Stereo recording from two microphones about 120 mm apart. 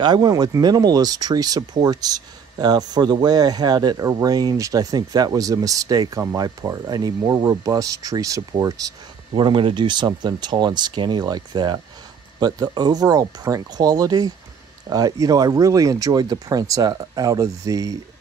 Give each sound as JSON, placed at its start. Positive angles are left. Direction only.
{"t": 0.0, "sound": "speech", "side_deg": -35}
{"t": 9.3, "sound": "speech", "side_deg": -40}